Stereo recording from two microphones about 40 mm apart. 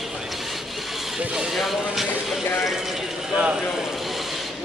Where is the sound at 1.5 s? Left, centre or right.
Centre.